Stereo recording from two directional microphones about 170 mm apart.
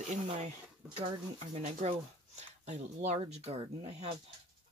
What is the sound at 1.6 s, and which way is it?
Speech, 40° right (ahead or behind).